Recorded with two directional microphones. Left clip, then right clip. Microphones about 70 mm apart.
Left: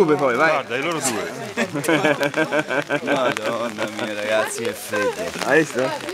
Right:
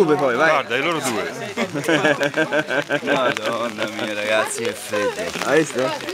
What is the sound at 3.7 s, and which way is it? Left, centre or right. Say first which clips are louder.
Speech: right 1 dB; centre.